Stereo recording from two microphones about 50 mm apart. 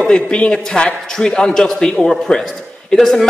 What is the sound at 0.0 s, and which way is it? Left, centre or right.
A man's voice, left.